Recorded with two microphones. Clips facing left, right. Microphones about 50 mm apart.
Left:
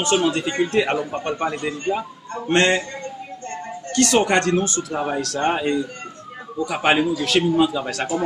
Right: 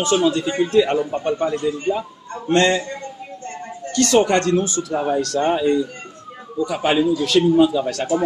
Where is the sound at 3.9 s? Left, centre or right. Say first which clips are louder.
Right 2 dB; left.